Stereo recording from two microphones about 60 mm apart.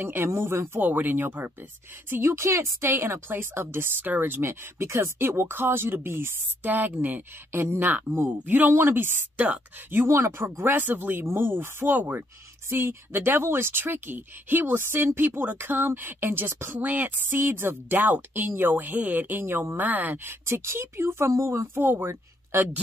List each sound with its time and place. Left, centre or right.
0.0 s speech: right
0.7 s speech: right
6.6 s speech: right
10.6 s speech: right
20.4 s speech: right